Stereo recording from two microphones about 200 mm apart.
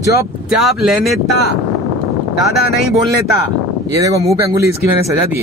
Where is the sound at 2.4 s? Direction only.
50° left (ahead or behind).